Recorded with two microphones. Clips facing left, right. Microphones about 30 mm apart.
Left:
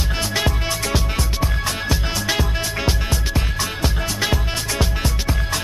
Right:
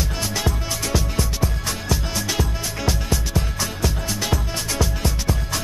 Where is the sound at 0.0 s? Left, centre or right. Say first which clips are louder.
Left 3 dB; left.